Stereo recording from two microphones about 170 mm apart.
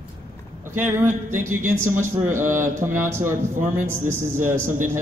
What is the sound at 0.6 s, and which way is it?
Speech, 15° right (ahead or behind).